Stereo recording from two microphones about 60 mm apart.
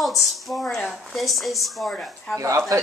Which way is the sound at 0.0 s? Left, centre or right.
Centre.